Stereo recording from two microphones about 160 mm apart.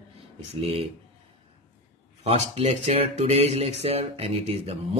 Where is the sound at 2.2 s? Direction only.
40° right (ahead or behind).